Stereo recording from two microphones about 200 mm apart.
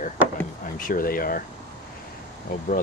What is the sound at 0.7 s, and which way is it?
Speech, 45° left (ahead or behind).